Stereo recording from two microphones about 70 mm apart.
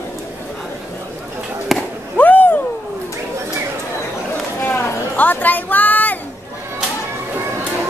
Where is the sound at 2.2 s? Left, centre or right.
Left.